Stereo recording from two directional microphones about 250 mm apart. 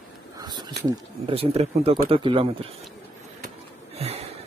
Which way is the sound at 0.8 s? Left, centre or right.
Right.